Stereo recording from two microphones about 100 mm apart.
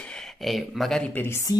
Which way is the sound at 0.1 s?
Centre (ahead or behind).